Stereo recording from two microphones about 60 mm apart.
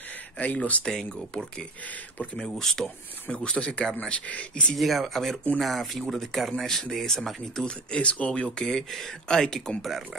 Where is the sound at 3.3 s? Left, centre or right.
Centre.